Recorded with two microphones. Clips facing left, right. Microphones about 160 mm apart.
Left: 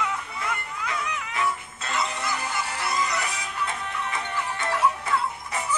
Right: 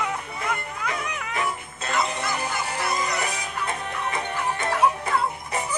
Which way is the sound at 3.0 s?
45° right (ahead or behind).